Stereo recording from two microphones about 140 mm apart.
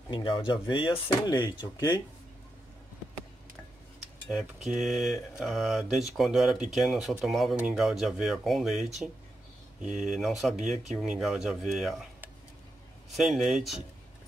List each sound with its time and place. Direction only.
0.1 s speech: 35° left (ahead or behind)
4.3 s speech: centre (ahead or behind)
13.1 s speech: centre (ahead or behind)